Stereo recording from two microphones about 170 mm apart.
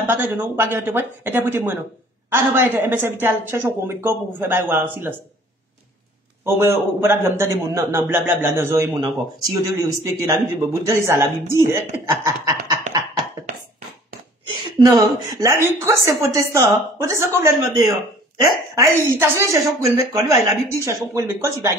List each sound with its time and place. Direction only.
0.0 s a woman's voice: 15° right (ahead or behind)
6.4 s a woman's voice: 15° right (ahead or behind)
14.5 s a woman's voice: 20° right (ahead or behind)